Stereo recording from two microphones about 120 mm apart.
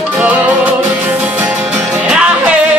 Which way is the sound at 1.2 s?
10° right (ahead or behind).